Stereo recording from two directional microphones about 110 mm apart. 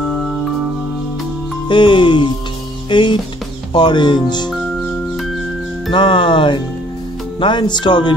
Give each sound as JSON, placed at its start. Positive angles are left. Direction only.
{"t": 1.7, "sound": "speech", "side_deg": 45}
{"t": 5.9, "sound": "speech", "side_deg": 45}